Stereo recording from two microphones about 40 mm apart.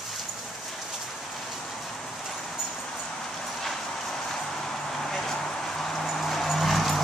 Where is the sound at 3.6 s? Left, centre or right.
Centre.